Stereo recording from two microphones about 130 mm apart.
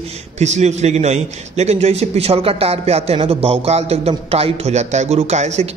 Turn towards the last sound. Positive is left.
turn(degrees=-60)  # may be behind; listen again after turning